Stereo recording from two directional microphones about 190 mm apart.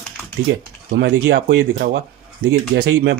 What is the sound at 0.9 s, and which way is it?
Speech, 55° right (ahead or behind).